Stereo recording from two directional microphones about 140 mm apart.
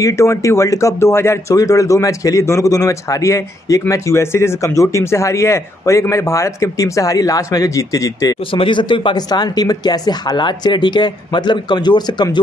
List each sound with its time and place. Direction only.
0.0 s a man's voice: 20° left (ahead or behind)
8.5 s speech: 35° left (ahead or behind)